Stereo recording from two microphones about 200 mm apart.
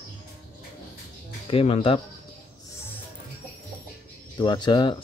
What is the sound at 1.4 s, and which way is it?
Speech, 30° left (ahead or behind).